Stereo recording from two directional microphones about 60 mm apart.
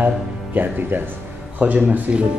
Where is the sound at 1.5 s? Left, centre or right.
Right.